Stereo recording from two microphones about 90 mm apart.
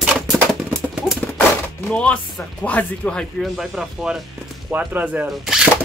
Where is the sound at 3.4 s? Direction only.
5° right (ahead or behind).